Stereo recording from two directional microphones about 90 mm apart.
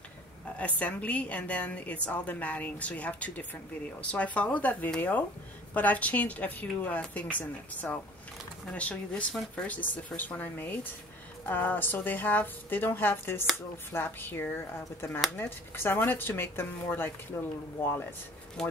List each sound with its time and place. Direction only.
0.6 s a woman's voice: 15° left (ahead or behind); by 17.5 s 30° left (ahead or behind)